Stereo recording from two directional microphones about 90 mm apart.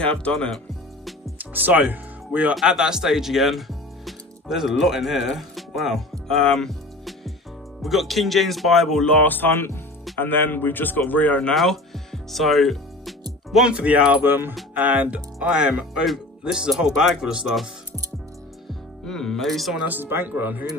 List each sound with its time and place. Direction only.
0.0 s speech: 10° left (ahead or behind)
1.4 s speech: 20° right (ahead or behind)
2.5 s speech: 5° right (ahead or behind)
6.2 s music: 5° left (ahead or behind)
7.8 s speech: centre (ahead or behind)
9.2 s speech: 20° left (ahead or behind)
11.5 s music: centre (ahead or behind)
13.5 s speech: 10° right (ahead or behind)
14.2 s speech: 25° right (ahead or behind); by 17.6 s 10° right (ahead or behind)
18.7 s music: 5° left (ahead or behind)
19.9 s speech: 25° right (ahead or behind)